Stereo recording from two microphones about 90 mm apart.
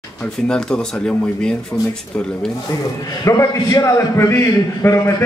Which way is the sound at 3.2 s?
40° left (ahead or behind).